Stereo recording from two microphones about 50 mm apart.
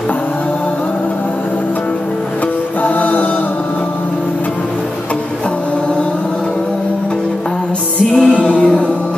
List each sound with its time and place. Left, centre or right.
2.8 s music: left
8.1 s music: centre
8.4 s music: left